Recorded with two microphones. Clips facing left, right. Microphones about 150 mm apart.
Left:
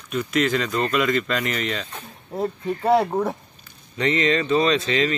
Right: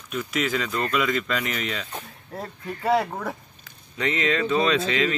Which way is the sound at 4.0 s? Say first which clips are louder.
Left 3 dB; 5° right (ahead or behind).